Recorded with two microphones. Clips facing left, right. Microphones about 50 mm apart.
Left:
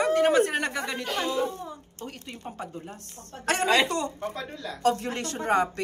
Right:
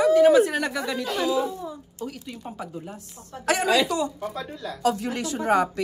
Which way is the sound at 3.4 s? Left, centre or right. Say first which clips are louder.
Right 2 dB; left.